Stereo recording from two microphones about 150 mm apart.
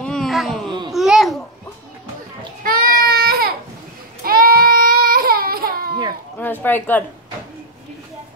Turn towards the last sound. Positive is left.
turn(degrees=10)  # may be behind; listen again after turning